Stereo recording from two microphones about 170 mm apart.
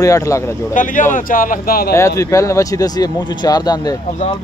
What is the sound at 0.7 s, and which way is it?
A man's voice, 50° left (ahead or behind).